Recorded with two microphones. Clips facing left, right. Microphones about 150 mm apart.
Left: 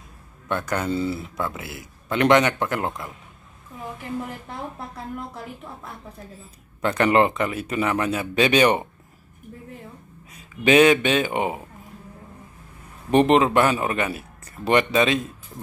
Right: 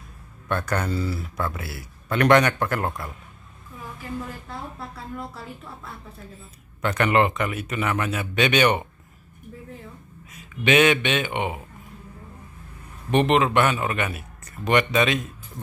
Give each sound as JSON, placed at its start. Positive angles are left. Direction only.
{"t": 0.5, "sound": "speech", "side_deg": 15}
{"t": 6.8, "sound": "a man's voice", "side_deg": 30}
{"t": 10.3, "sound": "a man's voice", "side_deg": 35}
{"t": 13.1, "sound": "a man's voice", "side_deg": 35}